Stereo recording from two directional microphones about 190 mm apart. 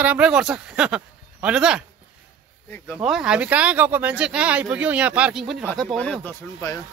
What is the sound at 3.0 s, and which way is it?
Speech, 5° right (ahead or behind).